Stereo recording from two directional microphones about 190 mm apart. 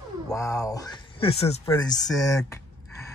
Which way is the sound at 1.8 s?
20° left (ahead or behind).